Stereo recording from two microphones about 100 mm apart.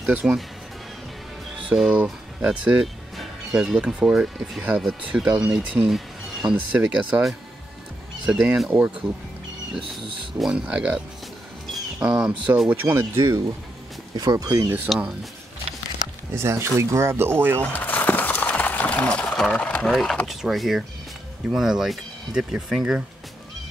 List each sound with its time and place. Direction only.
0.2 s speech: 10° right (ahead or behind)
1.7 s speech: 10° right (ahead or behind)
5.9 s a sound: centre (ahead or behind)
6.5 s speech: 15° right (ahead or behind)
10.4 s speech: 10° right (ahead or behind); by 13.4 s 30° right (ahead or behind)
14.1 s speech: 40° right (ahead or behind)
14.9 s speech: centre (ahead or behind)
16.3 s speech: 25° right (ahead or behind)
17.7 s a sound: 15° left (ahead or behind)
19.8 s speech: centre (ahead or behind)